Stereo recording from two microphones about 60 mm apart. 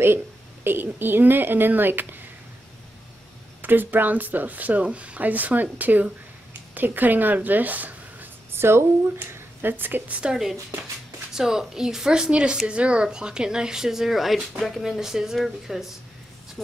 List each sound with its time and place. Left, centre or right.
0.7 s speech: right
3.6 s speech: right
8.5 s speech: right
10.3 s speech: centre